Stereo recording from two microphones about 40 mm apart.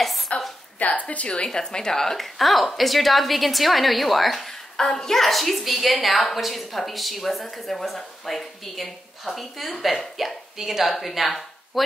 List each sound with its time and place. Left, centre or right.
0.3 s a sound: left
0.7 s a woman's voice: left
1.3 s a woman's voice: centre